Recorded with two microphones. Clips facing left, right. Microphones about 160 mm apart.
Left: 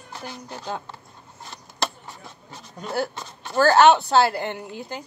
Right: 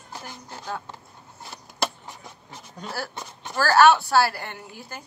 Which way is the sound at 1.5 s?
15° right (ahead or behind).